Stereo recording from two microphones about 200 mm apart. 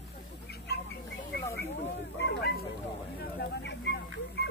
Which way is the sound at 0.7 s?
55° left (ahead or behind).